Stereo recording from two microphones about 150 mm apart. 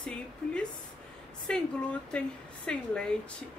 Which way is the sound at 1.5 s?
5° left (ahead or behind).